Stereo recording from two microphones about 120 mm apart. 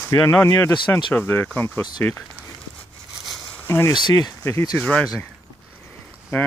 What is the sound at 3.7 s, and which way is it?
Speech, 20° left (ahead or behind).